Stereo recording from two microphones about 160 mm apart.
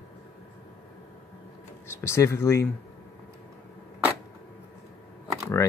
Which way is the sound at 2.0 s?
15° left (ahead or behind).